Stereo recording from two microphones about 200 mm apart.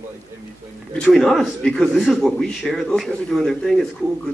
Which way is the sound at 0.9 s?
Centre (ahead or behind).